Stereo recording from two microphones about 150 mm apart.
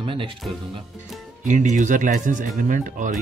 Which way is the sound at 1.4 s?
60° right (ahead or behind).